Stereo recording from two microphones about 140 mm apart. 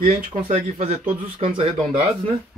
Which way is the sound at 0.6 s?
50° right (ahead or behind).